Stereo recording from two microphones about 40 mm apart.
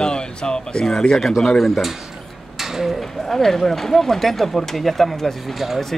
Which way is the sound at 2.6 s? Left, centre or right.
Centre.